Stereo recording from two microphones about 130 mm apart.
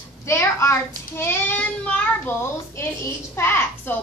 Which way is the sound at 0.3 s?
20° left (ahead or behind).